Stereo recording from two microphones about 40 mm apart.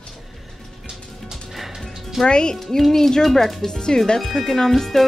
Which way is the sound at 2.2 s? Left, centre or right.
Centre.